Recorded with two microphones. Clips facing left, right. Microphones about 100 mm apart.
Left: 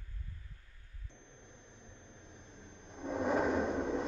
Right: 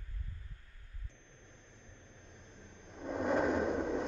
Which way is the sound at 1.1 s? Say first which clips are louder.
Left 6 dB; 25° left (ahead or behind).